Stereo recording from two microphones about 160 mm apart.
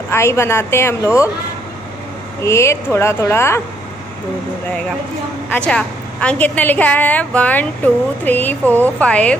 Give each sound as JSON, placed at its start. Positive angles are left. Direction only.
{"t": 0.1, "sound": "a woman's voice", "side_deg": 15}
{"t": 2.4, "sound": "a woman's voice", "side_deg": 15}
{"t": 5.5, "sound": "a woman's voice", "side_deg": 5}